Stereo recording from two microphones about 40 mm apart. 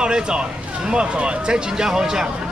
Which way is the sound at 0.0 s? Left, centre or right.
Right.